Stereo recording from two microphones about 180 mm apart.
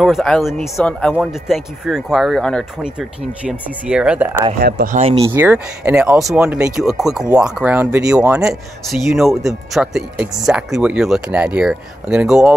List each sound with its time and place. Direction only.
0.0 s speech: centre (ahead or behind)
4.6 s speech: 55° right (ahead or behind)
4.9 s speech: 35° right (ahead or behind)
5.3 s speech: 10° right (ahead or behind)